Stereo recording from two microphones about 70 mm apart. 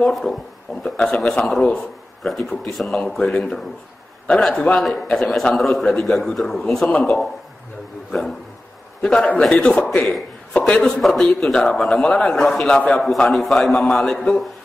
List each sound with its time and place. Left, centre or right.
0.1 s a man's voice: centre
8.1 s a sound: centre
9.0 s a man's voice: centre
13.0 s a man's voice: centre